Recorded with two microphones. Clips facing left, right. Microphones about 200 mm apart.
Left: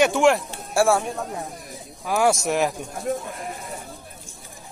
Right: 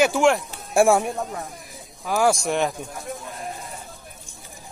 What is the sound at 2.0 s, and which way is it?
Speech, centre (ahead or behind).